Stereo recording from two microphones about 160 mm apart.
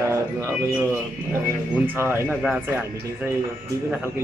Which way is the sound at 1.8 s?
15° right (ahead or behind).